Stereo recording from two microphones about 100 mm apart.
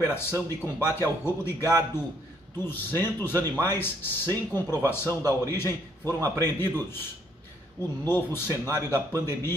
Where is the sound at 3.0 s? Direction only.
20° left (ahead or behind).